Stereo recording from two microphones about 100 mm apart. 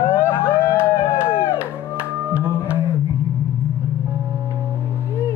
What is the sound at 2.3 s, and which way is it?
Music, 20° right (ahead or behind).